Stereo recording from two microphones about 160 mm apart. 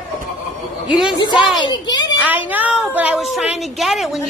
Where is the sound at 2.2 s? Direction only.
10° right (ahead or behind).